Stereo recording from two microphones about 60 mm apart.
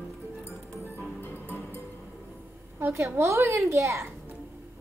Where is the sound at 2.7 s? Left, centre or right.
Right.